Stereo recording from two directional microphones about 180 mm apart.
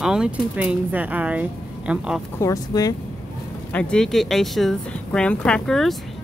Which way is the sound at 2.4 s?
20° left (ahead or behind).